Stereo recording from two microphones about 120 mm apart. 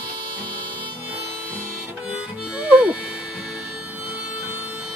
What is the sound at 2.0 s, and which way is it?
Harmonica, 10° right (ahead or behind).